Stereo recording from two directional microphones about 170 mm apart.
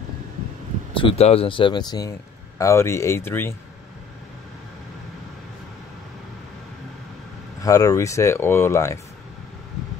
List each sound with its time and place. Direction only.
0.9 s speech: 35° left (ahead or behind); by 3.5 s 15° left (ahead or behind)
7.6 s speech: 20° left (ahead or behind)